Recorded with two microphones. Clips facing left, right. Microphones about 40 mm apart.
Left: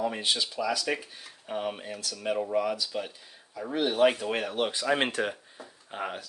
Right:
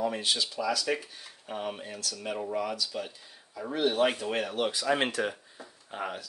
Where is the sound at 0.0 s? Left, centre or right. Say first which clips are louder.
Left 1 dB; centre.